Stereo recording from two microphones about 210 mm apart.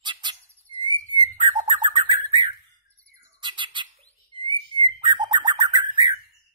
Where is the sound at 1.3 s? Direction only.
20° right (ahead or behind).